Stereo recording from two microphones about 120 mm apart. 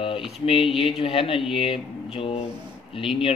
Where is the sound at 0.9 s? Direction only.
50° left (ahead or behind).